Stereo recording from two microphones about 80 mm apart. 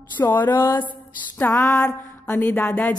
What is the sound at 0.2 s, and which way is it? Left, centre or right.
Speech, left.